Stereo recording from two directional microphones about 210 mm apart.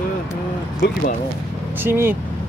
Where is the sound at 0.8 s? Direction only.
50° left (ahead or behind).